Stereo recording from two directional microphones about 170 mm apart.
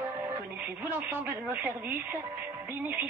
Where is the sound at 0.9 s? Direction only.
10° right (ahead or behind).